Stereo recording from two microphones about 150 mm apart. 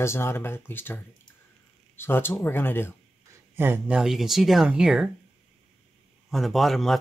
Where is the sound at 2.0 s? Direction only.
15° left (ahead or behind).